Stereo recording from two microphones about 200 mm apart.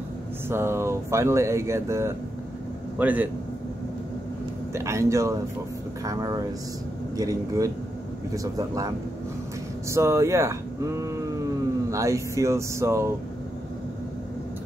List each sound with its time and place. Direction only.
0.5 s speech: 15° right (ahead or behind)
4.7 s speech: 15° right (ahead or behind)